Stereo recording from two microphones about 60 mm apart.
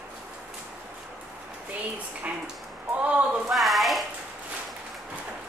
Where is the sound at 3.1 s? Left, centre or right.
Right.